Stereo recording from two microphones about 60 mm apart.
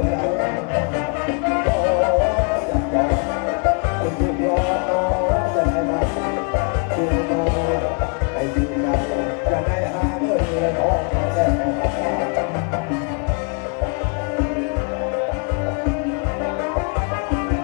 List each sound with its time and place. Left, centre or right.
0.0 s music: centre